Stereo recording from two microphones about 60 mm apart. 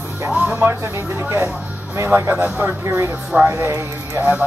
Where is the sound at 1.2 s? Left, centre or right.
Right.